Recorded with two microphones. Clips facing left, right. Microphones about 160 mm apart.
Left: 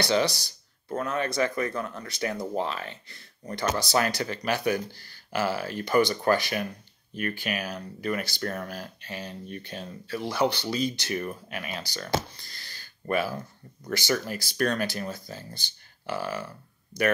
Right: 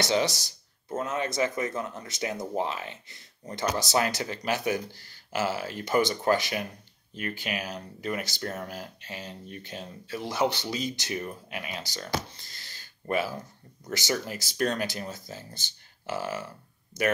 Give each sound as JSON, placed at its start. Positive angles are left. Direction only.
{"t": 0.0, "sound": "speech", "side_deg": -20}
{"t": 12.4, "sound": "a sound", "side_deg": -20}
{"t": 13.8, "sound": "speech", "side_deg": -20}